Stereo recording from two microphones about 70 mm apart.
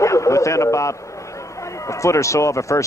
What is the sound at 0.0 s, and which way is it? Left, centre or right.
A man's voice, left.